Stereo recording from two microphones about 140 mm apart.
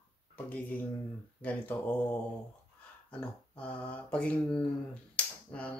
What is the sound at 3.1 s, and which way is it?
Speech, 10° left (ahead or behind).